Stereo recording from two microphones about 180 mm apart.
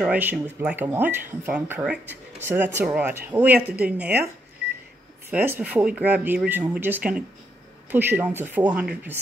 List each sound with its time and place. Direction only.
0.0 s speech: 10° right (ahead or behind)
5.3 s speech: 10° right (ahead or behind)